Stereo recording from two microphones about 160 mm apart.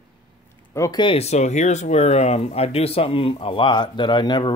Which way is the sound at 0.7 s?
20° left (ahead or behind).